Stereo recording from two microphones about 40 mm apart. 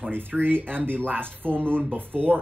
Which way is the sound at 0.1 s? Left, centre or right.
Right.